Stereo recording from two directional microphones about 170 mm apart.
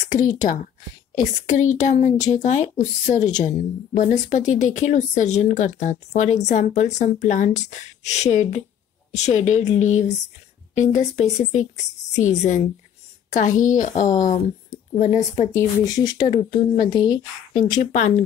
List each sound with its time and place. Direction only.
0.1 s speech: 45° left (ahead or behind)
15.5 s speech: 25° left (ahead or behind)
17.6 s speech: 45° left (ahead or behind)